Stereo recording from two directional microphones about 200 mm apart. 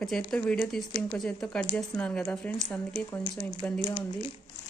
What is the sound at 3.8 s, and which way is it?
Speech, 25° left (ahead or behind).